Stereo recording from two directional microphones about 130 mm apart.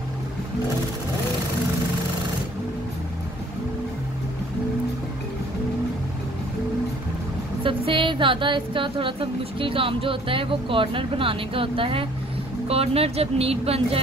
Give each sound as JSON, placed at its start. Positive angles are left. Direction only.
{"t": 7.6, "sound": "speech", "side_deg": -40}